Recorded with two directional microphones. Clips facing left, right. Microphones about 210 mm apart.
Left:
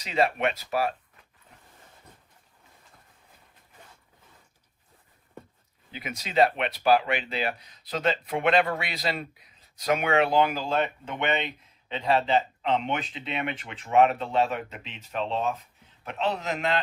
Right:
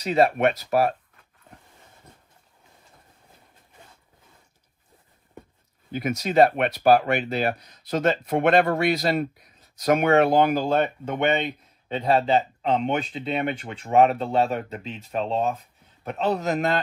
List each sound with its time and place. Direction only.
0.0 s speech: 45° right (ahead or behind)
5.9 s speech: 45° right (ahead or behind)